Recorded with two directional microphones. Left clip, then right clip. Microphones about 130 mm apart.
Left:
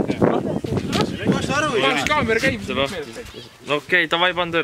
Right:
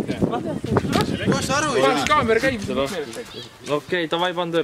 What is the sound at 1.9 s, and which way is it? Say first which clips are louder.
Speech: right 1 dB; centre (ahead or behind).